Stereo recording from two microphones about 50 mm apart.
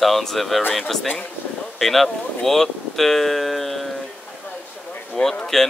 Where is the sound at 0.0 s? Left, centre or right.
Centre.